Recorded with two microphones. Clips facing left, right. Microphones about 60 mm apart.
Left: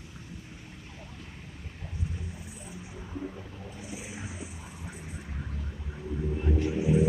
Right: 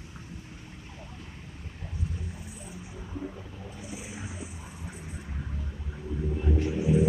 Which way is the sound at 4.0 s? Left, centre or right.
Centre.